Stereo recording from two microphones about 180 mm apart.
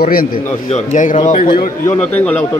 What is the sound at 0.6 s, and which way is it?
Speech, 45° left (ahead or behind).